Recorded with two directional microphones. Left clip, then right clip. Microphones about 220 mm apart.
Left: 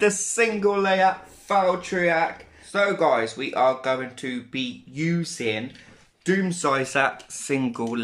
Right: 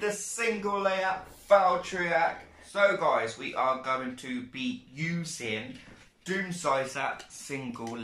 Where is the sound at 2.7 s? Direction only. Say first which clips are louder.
Left 4 dB; 45° left (ahead or behind).